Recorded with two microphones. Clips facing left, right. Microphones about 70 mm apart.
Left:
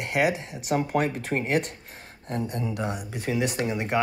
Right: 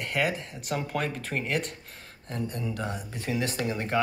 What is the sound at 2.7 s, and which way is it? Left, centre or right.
Speech, centre.